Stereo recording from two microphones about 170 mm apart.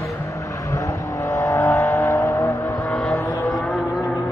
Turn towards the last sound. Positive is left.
turn(degrees=5)  # may be behind; listen again after turning